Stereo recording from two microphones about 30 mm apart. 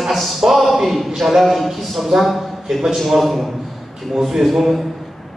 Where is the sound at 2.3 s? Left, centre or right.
Centre.